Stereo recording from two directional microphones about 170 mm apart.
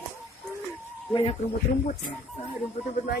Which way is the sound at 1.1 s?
25° left (ahead or behind).